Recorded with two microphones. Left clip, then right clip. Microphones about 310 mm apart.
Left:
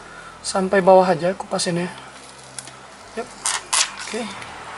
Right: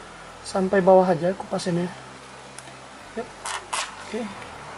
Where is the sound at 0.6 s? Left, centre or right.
Centre.